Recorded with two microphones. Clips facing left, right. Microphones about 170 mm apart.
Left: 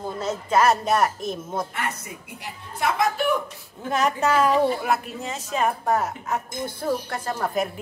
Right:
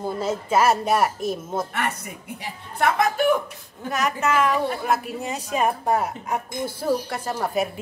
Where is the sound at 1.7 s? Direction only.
65° right (ahead or behind).